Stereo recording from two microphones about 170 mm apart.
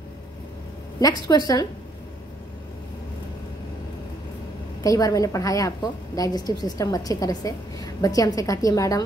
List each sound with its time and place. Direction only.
0.9 s a woman's voice: 20° left (ahead or behind)
4.8 s a woman's voice: 20° left (ahead or behind)